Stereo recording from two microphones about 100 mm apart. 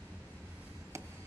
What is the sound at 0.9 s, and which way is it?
Chop, 30° right (ahead or behind).